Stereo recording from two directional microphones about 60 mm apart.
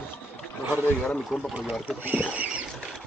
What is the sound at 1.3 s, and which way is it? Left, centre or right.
Speech, centre.